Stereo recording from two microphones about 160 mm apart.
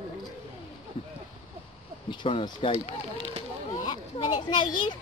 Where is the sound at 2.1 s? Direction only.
30° left (ahead or behind).